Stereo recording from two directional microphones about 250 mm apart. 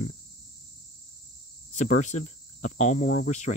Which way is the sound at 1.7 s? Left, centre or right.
Left.